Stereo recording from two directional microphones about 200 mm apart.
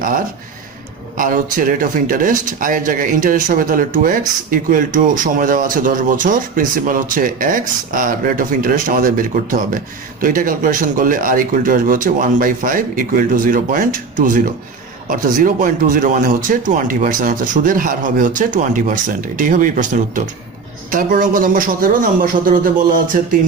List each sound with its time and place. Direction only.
1.1 s speech: 45° right (ahead or behind)